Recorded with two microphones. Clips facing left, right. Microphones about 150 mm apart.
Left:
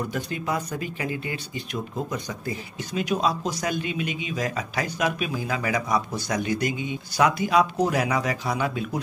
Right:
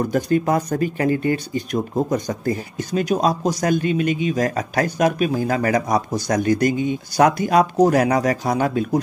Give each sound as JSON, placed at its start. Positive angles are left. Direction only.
{"t": 0.0, "sound": "speech", "side_deg": -45}